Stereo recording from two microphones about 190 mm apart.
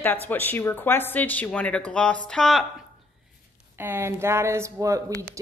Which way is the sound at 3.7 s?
10° right (ahead or behind).